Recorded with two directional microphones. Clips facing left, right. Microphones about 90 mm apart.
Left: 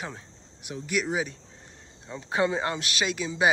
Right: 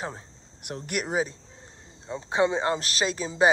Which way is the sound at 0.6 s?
55° right (ahead or behind).